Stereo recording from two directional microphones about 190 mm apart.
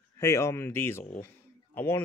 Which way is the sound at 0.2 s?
15° left (ahead or behind).